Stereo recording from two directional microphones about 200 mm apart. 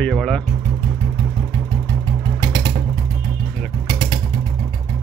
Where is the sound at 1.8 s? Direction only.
20° right (ahead or behind).